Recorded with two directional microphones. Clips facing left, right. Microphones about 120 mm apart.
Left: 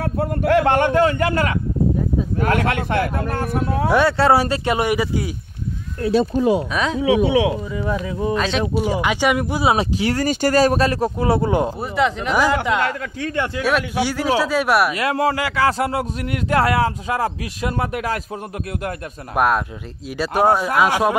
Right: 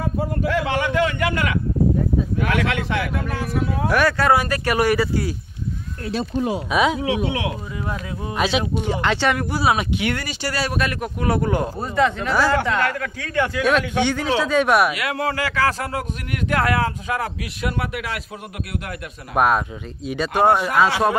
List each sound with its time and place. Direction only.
0.0 s a sound: 65° left (ahead or behind); by 1.6 s 35° left (ahead or behind)
2.3 s speech: 40° left (ahead or behind)
3.9 s speech: 20° left (ahead or behind)
6.7 s speech: 10° right (ahead or behind)
8.4 s speech: 5° right (ahead or behind)
9.0 s speech: 10° left (ahead or behind)
9.8 s speech: 35° left (ahead or behind)
13.6 s a man's voice: 5° left (ahead or behind)
15.0 s speech: 35° left (ahead or behind)
19.3 s a man's voice: centre (ahead or behind)